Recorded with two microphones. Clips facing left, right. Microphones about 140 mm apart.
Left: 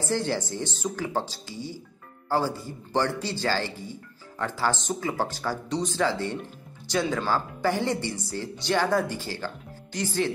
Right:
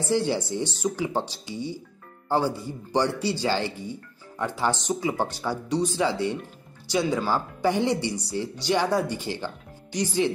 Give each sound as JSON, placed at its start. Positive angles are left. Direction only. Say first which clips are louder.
{"t": 0.1, "sound": "speech", "louder": "right 4 dB", "side_deg": -15}